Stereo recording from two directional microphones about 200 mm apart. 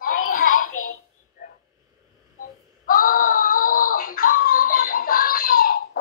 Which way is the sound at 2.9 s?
45° left (ahead or behind).